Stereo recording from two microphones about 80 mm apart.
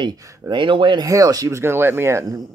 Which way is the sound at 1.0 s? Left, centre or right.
Right.